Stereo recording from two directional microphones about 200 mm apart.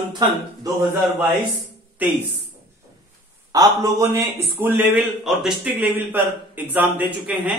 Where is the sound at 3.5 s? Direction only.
20° right (ahead or behind).